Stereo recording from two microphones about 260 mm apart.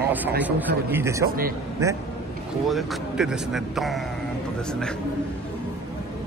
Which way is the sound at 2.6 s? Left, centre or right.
Centre.